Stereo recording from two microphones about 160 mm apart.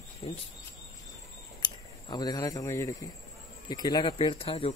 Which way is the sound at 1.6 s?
25° left (ahead or behind).